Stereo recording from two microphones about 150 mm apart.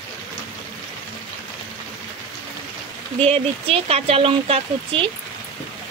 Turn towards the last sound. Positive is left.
turn(degrees=-35)  # may be behind; listen again after turning